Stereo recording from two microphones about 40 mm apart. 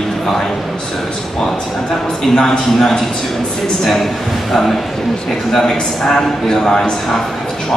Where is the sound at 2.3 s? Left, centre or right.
Centre.